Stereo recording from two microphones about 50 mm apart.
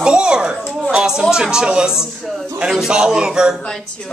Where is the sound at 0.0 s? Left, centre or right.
Centre.